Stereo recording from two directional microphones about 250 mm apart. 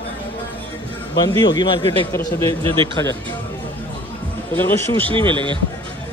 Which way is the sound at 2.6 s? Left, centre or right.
Right.